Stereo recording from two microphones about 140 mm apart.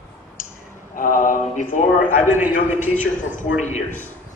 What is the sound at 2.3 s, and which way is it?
Speech, 15° right (ahead or behind).